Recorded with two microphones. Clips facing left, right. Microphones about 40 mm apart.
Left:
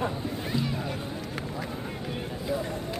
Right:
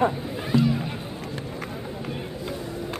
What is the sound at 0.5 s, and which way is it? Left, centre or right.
Music, right.